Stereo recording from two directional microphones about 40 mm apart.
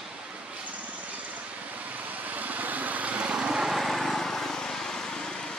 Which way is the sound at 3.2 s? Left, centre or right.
Right.